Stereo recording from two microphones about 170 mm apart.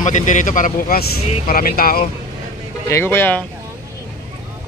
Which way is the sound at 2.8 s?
15° left (ahead or behind).